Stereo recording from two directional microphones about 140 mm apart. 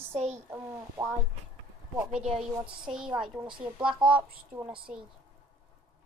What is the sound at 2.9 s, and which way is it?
A woman's voice, 5° right (ahead or behind).